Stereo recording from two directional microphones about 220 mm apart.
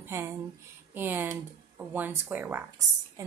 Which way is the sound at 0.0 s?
10° right (ahead or behind).